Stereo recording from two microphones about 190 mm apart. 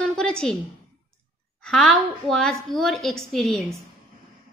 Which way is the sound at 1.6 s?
5° left (ahead or behind).